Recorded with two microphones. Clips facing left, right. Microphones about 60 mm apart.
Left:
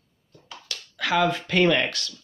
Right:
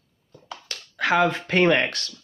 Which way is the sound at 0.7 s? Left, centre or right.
Right.